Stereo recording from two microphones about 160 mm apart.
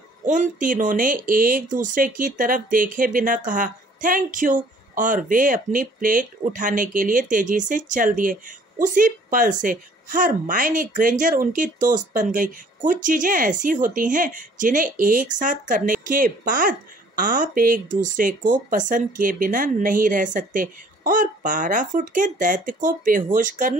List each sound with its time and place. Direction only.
0.2 s speech: 55° right (ahead or behind)